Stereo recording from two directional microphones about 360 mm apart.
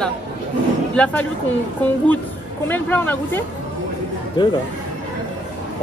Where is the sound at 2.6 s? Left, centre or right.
Centre.